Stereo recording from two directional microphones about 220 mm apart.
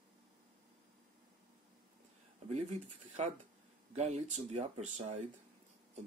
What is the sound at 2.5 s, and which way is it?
Speech, 30° right (ahead or behind).